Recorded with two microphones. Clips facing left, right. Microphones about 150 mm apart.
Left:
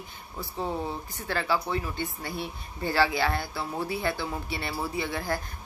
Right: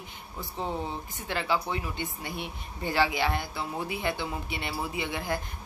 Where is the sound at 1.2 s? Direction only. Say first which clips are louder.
Left 1 dB; 20° right (ahead or behind).